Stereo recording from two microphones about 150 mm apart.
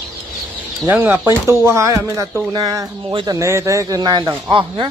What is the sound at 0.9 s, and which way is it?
A man's voice, 10° right (ahead or behind).